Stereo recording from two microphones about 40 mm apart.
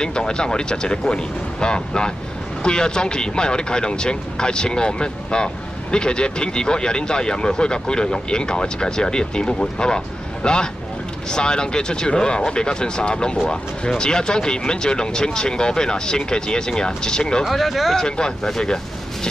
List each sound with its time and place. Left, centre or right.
0.0 s speech: left
17.5 s speech: centre
18.0 s speech: centre